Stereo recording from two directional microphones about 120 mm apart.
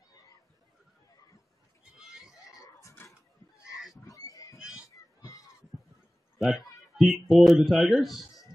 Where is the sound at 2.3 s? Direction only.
30° left (ahead or behind).